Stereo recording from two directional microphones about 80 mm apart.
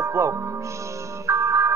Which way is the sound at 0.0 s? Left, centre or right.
Right.